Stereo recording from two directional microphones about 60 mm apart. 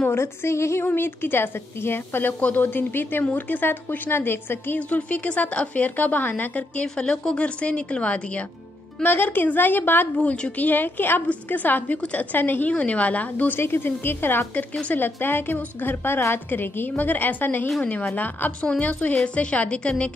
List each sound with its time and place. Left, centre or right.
0.1 s a woman's voice: left
0.8 s a woman's voice: left
4.7 s a woman's voice: left
9.0 s a woman's voice: left
10.1 s a woman's voice: centre
10.6 s a woman's voice: left
14.5 s a woman's voice: left